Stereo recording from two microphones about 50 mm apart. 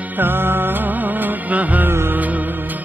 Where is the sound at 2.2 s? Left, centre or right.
Right.